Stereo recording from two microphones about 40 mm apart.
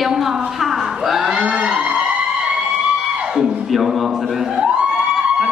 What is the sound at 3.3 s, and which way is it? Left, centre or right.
Music, centre.